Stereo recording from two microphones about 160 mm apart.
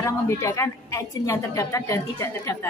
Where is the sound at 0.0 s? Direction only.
20° left (ahead or behind).